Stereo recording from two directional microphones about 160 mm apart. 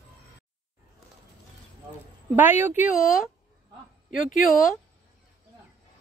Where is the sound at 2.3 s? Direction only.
10° right (ahead or behind).